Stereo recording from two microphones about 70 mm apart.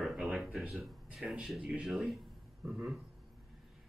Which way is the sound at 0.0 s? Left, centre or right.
Centre.